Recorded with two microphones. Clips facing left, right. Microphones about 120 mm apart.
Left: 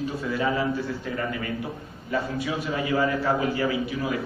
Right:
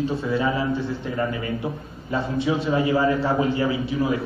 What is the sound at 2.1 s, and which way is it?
A man's voice, 25° right (ahead or behind).